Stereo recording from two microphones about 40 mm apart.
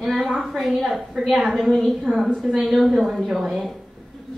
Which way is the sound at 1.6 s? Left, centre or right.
Centre.